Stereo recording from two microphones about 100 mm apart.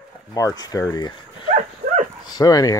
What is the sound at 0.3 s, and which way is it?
Speech, 35° left (ahead or behind).